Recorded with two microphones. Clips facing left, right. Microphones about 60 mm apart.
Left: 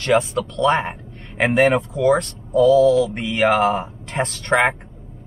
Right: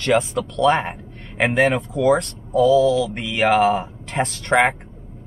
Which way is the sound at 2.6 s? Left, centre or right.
Left.